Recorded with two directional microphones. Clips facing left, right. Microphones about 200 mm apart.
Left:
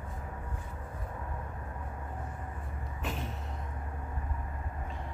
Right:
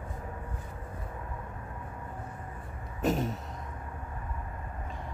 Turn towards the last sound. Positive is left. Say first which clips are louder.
# right 10 dB
turn(degrees=-40)  # may be behind; listen again after turning